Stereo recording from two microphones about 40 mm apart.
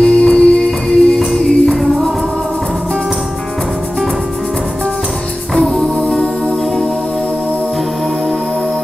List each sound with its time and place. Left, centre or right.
0.0 s music: centre
0.7 s music: centre